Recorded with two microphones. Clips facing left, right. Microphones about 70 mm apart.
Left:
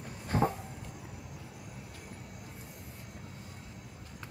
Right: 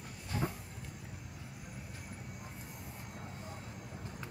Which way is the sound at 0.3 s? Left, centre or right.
Left.